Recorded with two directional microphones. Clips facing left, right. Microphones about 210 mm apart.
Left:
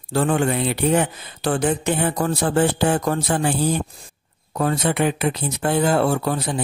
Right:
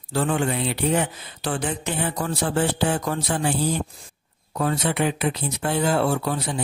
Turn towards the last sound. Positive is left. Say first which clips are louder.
# left 3 dB
turn(degrees=50)  # may be behind; listen again after turning